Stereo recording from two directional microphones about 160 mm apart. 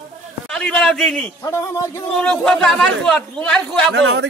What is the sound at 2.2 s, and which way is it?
Speech, 5° left (ahead or behind).